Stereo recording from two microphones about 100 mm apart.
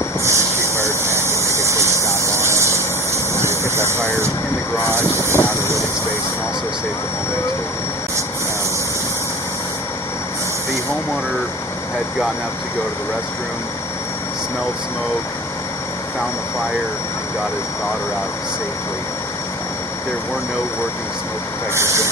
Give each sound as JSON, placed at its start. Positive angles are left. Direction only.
{"t": 0.2, "sound": "vehicle", "side_deg": -30}
{"t": 4.9, "sound": "speech", "side_deg": -25}
{"t": 21.7, "sound": "speech", "side_deg": -25}